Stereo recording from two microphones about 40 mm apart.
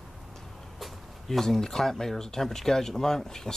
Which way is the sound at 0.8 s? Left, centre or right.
Centre.